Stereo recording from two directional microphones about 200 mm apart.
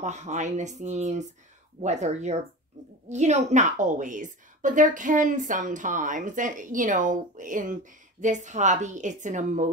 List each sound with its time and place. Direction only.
0.0 s a woman's voice: 35° right (ahead or behind)